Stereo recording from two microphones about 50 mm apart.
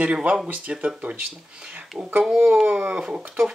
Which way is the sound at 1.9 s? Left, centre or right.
Right.